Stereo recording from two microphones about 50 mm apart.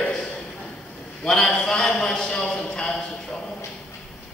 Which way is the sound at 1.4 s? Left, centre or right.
Centre.